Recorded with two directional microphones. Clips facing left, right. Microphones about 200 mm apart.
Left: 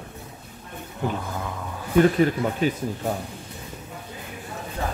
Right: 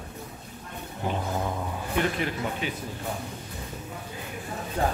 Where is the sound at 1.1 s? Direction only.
25° right (ahead or behind).